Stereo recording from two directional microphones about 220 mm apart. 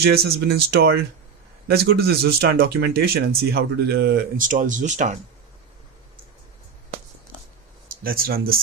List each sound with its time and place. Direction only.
0.0 s speech: 45° right (ahead or behind)
8.0 s speech: 40° right (ahead or behind)